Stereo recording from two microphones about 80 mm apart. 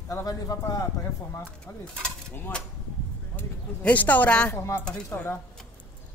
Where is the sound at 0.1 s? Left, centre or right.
Left.